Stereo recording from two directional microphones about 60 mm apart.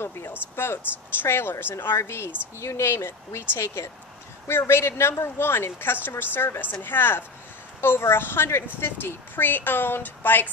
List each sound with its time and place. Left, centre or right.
0.0 s a woman's voice: left
4.5 s a woman's voice: left